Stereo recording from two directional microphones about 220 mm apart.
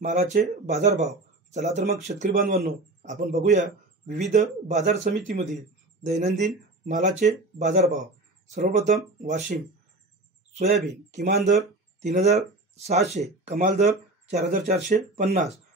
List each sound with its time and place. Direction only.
0.0 s speech: 30° right (ahead or behind)
11.1 s speech: 45° right (ahead or behind)
12.0 s speech: 30° right (ahead or behind)